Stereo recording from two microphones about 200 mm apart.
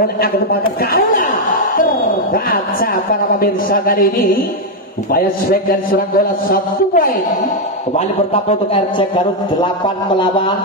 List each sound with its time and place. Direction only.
0.0 s a man's voice: 50° left (ahead or behind)
2.3 s a man's voice: 45° left (ahead or behind)
7.9 s a man's voice: 30° left (ahead or behind)